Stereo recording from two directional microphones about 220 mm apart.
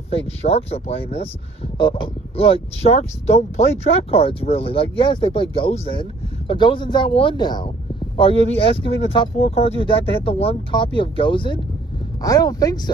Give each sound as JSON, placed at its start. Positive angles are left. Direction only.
{"t": 0.1, "sound": "speech", "side_deg": 25}